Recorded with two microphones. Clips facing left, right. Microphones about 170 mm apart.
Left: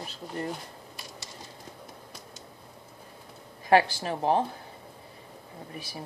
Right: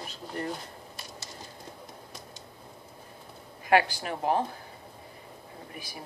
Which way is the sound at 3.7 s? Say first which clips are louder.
Left 2 dB; 25° left (ahead or behind).